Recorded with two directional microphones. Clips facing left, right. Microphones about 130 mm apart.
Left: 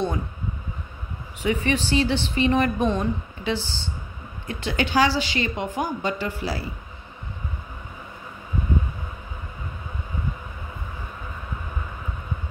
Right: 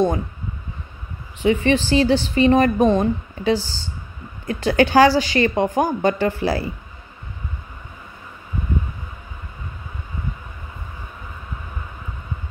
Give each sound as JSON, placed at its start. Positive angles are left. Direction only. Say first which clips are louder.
{"t": 1.4, "sound": "a woman's voice", "louder": "right 6 dB", "side_deg": -35}